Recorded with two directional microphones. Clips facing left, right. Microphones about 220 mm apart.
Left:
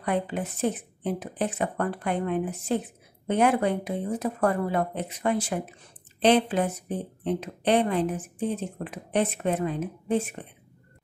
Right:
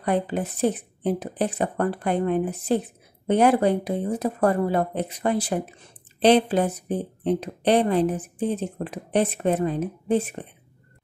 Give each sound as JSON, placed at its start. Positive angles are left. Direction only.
{"t": 0.0, "sound": "speech", "side_deg": -35}